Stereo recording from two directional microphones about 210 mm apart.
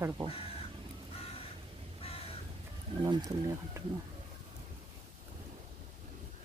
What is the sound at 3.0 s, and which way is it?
Speech, 15° right (ahead or behind).